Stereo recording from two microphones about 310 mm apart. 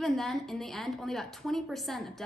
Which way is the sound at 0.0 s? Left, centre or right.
Centre.